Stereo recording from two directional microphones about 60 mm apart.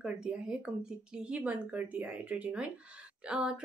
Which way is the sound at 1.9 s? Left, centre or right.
Right.